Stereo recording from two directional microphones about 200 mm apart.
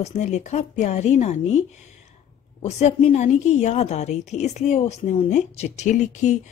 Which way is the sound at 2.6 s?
35° left (ahead or behind).